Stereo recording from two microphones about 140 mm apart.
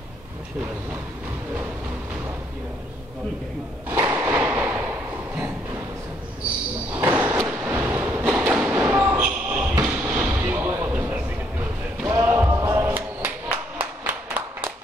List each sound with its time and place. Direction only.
3.9 s thump: 20° right (ahead or behind)
6.9 s a sound: 15° right (ahead or behind)
13.7 s clapping: 15° right (ahead or behind)